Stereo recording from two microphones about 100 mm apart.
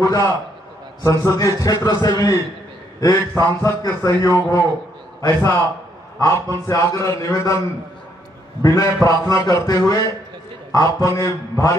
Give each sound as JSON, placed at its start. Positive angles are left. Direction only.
{"t": 0.0, "sound": "a man's voice", "side_deg": 35}
{"t": 8.6, "sound": "a man's voice", "side_deg": 35}